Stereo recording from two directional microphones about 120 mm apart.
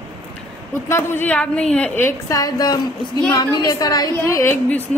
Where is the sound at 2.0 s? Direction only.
25° left (ahead or behind).